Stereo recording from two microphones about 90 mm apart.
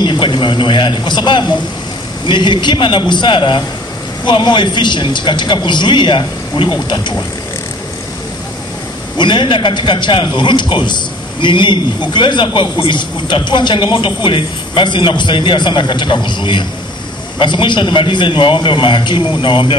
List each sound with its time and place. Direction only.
0.0 s a man's voice: 60° left (ahead or behind)
9.2 s a man's voice: 60° left (ahead or behind)